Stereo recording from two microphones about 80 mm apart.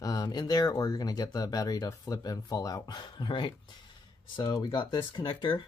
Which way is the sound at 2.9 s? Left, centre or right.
Left.